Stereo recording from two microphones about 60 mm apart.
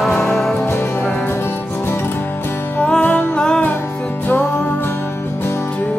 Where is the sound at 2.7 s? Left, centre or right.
Centre.